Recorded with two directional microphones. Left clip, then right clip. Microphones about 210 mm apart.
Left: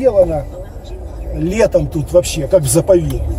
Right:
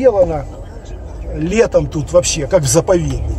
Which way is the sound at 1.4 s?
15° right (ahead or behind).